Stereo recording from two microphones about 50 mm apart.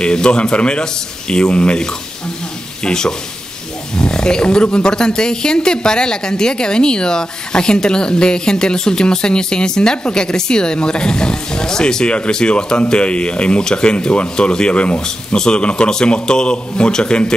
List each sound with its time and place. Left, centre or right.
0.0 s a man's voice: centre